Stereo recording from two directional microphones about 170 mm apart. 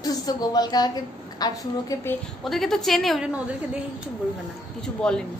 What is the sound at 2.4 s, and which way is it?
A woman's voice, centre (ahead or behind).